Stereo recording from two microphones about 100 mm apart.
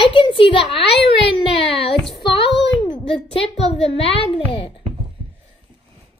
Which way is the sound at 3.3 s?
75° left (ahead or behind).